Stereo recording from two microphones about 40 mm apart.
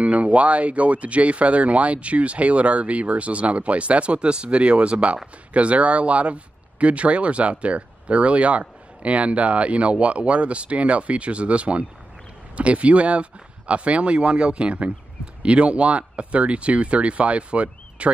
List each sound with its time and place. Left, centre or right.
0.0 s speech: right